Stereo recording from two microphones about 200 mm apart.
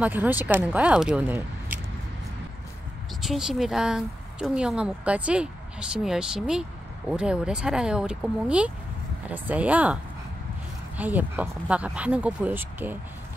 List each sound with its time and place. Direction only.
0.0 s speech: 10° right (ahead or behind)
3.2 s speech: centre (ahead or behind)
11.0 s speech: 10° right (ahead or behind)